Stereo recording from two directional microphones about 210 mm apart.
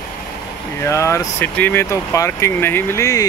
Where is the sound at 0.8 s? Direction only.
15° left (ahead or behind).